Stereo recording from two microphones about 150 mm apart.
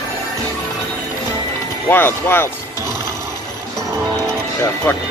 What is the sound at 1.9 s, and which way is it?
Speech, 15° left (ahead or behind).